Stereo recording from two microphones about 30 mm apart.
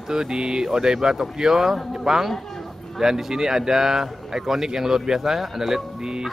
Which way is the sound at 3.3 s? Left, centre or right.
Centre.